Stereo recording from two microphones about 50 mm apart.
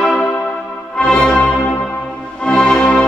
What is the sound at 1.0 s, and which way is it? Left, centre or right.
Brass instrument, centre.